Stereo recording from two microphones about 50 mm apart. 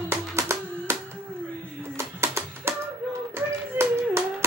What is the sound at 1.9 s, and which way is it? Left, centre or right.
Music, right.